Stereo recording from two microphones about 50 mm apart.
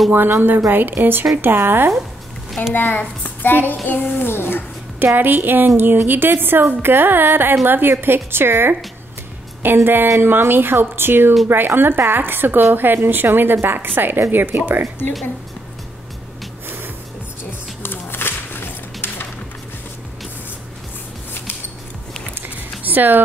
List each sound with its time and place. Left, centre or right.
0.1 s speech: right
2.7 s child singing: left
4.9 s speech: right
15.0 s speech: left
17.8 s a sound: left
22.8 s speech: right